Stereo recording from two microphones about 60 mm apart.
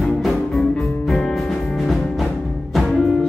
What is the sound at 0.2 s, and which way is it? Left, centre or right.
Music, centre.